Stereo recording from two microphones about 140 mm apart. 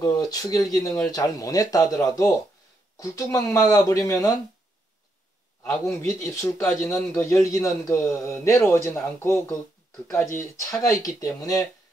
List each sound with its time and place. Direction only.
0.0 s a man's voice: 25° left (ahead or behind)
5.9 s a man's voice: 20° left (ahead or behind)